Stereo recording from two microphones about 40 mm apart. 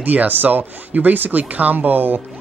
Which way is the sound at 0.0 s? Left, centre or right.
Right.